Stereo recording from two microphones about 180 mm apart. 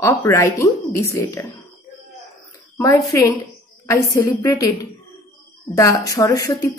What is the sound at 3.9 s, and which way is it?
A woman's voice, 15° left (ahead or behind).